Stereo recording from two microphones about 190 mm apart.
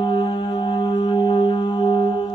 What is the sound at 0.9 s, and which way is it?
Music, 25° left (ahead or behind).